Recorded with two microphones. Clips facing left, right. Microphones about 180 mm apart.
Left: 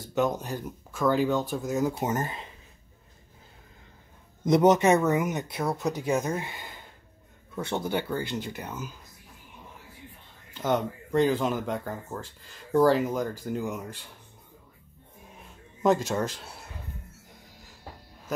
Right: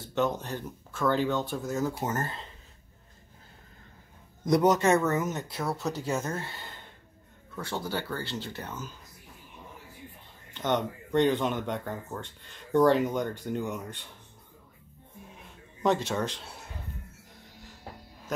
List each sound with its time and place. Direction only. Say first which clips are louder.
0.0 s speech: left 2 dB; 10° left (ahead or behind)
4.5 s speech: left 3 dB; 20° left (ahead or behind)
10.5 s speech: left 2 dB; 5° left (ahead or behind)
15.8 s speech: left 3 dB; 5° left (ahead or behind)